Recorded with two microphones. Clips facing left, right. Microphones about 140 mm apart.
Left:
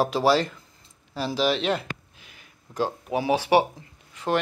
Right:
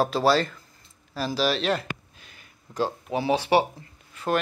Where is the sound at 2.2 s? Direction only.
15° left (ahead or behind).